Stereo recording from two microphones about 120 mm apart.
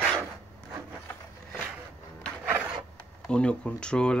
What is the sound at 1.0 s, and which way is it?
Wood, 15° left (ahead or behind).